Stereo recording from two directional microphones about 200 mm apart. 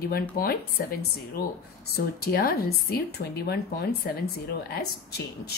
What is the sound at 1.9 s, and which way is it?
Speech, 50° left (ahead or behind).